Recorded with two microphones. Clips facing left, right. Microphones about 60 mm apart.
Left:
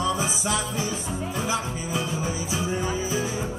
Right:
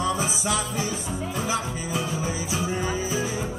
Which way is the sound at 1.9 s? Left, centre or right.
Left.